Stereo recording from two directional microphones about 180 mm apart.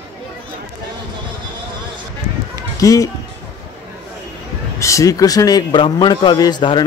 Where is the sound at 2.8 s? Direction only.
20° left (ahead or behind).